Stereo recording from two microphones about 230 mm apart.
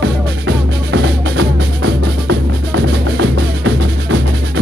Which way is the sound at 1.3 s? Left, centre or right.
Right.